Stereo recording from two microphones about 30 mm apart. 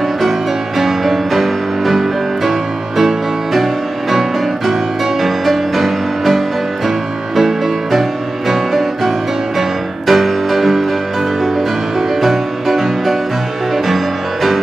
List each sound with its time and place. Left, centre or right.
0.7 s music: centre
12.2 s music: centre